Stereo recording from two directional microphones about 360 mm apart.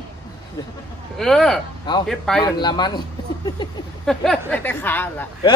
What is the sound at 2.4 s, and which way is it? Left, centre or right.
Speech, centre.